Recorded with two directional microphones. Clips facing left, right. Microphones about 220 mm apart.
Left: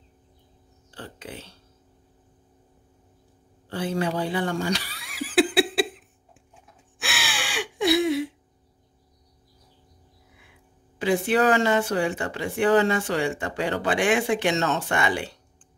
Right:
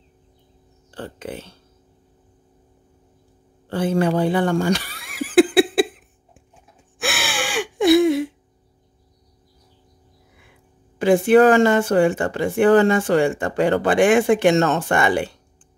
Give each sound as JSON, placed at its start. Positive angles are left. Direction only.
{"t": 0.9, "sound": "speech", "side_deg": -50}
{"t": 3.6, "sound": "a sound", "side_deg": -50}
{"t": 7.0, "sound": "gasp", "side_deg": -50}
{"t": 11.0, "sound": "speech", "side_deg": -50}